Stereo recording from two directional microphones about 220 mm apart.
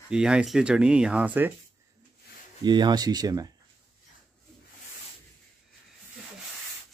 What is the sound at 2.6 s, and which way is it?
Speech, 20° right (ahead or behind).